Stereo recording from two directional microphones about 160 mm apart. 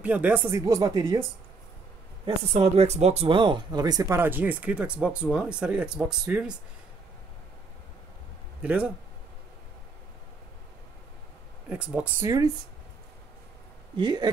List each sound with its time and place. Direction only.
0.0 s speech: 10° right (ahead or behind)
2.2 s speech: 40° right (ahead or behind); by 6.6 s 5° right (ahead or behind)
8.6 s speech: 10° right (ahead or behind)
11.7 s speech: 10° right (ahead or behind)
13.9 s speech: 25° right (ahead or behind)